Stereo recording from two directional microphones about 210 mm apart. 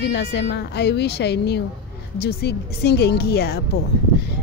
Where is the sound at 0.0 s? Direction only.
55° left (ahead or behind).